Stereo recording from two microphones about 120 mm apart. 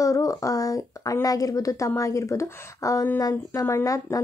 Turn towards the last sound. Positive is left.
turn(degrees=25)  # may be behind; listen again after turning